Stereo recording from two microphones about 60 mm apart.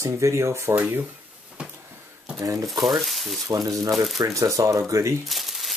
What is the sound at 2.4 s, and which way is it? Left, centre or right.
Speech, right.